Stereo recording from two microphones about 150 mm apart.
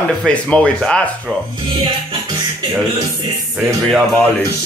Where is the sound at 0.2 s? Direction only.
5° left (ahead or behind).